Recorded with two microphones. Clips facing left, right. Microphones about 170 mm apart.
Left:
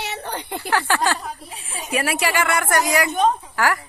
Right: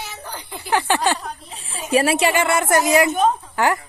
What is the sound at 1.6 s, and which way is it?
Speech, 30° right (ahead or behind).